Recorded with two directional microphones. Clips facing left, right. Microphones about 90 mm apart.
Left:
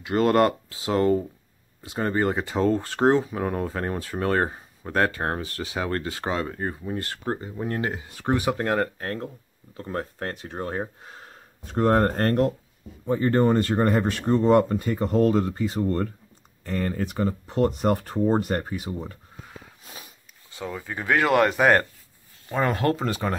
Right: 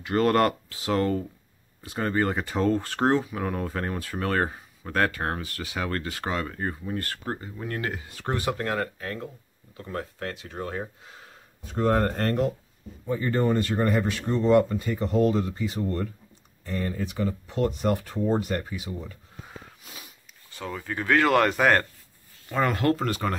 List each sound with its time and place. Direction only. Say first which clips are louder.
0.0 s speech: left 2 dB; 20° left (ahead or behind)
8.5 s speech: left 4 dB; 30° left (ahead or behind)
20.5 s speech: even; 15° left (ahead or behind)